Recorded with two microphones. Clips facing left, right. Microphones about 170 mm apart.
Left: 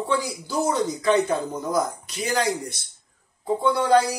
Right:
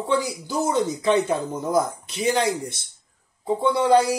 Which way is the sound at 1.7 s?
25° right (ahead or behind).